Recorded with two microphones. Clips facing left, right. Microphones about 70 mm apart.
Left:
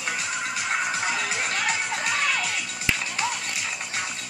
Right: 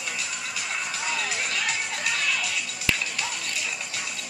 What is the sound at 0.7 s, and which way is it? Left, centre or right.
Music, left.